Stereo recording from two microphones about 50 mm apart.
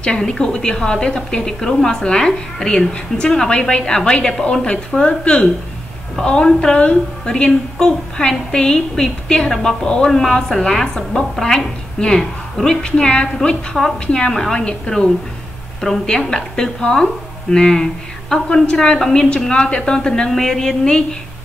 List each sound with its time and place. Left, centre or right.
0.0 s a woman's voice: centre
12.9 s a woman's voice: centre